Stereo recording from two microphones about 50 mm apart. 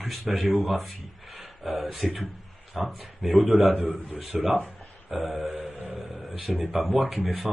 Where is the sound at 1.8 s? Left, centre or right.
Centre.